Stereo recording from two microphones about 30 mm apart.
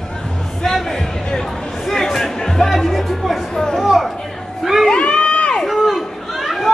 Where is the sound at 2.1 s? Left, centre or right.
Centre.